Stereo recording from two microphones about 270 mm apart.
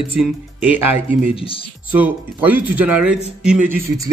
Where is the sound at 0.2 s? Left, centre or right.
Centre.